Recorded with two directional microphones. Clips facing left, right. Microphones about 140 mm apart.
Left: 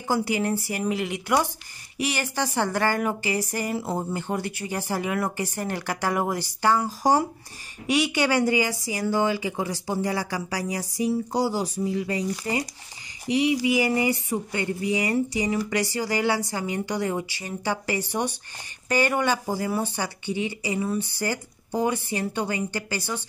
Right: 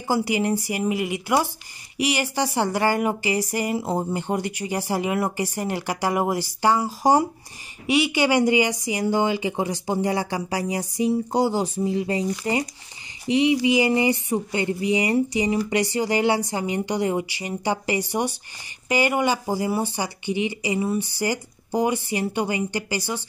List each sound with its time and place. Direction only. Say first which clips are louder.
0.1 s speech: right 2 dB; 10° right (ahead or behind)
13.7 s speech: right 3 dB; 20° right (ahead or behind)